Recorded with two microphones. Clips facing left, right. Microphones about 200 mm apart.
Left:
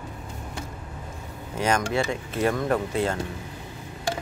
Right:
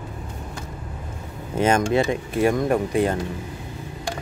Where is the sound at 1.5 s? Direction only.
25° right (ahead or behind).